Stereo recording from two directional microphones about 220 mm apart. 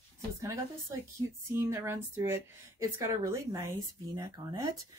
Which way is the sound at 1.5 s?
10° right (ahead or behind).